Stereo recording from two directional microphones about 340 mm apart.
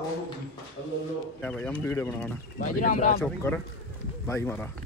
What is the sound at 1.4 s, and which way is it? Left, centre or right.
Speech, centre.